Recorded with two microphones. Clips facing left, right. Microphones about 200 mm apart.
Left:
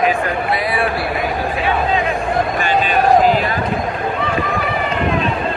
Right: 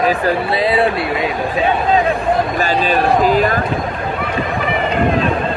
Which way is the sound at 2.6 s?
40° right (ahead or behind).